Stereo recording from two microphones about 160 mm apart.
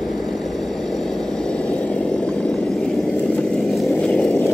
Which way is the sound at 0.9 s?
Centre (ahead or behind).